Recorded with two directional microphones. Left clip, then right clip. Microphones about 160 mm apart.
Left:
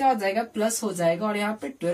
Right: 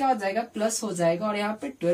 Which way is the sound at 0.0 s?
5° right (ahead or behind).